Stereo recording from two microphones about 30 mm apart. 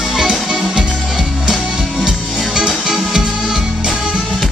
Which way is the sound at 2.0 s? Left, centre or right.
Centre.